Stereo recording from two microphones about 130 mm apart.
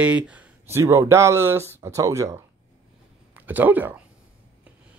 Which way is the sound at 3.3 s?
15° right (ahead or behind).